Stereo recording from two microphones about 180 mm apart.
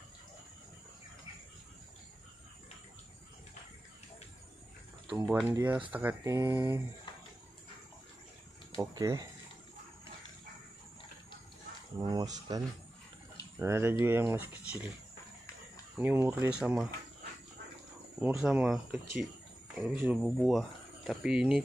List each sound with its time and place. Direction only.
5.0 s speech: 15° right (ahead or behind)
8.7 s speech: 20° right (ahead or behind)
12.0 s speech: 25° right (ahead or behind)
13.6 s speech: 15° right (ahead or behind)
16.0 s speech: 10° right (ahead or behind)
18.3 s speech: 5° right (ahead or behind)